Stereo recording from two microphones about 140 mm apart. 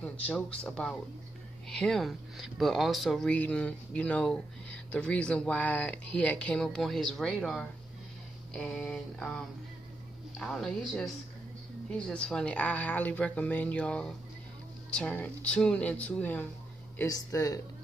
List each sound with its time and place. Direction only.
0.0 s speech: 10° left (ahead or behind)
10.4 s speech: 5° left (ahead or behind)
17.0 s speech: 25° left (ahead or behind)